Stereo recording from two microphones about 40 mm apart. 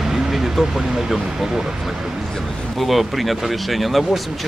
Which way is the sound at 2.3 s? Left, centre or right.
Centre.